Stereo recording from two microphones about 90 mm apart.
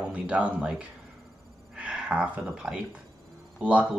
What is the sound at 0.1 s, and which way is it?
Speech, 15° right (ahead or behind).